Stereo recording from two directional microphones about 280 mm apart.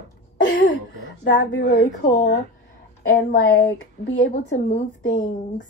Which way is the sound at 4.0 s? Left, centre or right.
Left.